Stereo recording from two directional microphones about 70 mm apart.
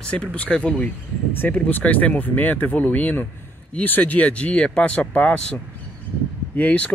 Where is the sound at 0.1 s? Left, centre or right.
Centre.